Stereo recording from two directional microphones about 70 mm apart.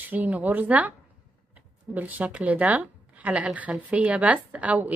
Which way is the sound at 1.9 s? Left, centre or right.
Right.